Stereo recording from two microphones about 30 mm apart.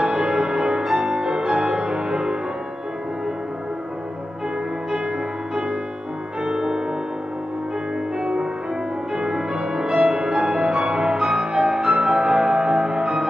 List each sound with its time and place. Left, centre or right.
0.0 s music: right
6.4 s music: right
8.2 s music: right